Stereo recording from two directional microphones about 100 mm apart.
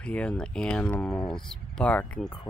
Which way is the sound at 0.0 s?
10° left (ahead or behind).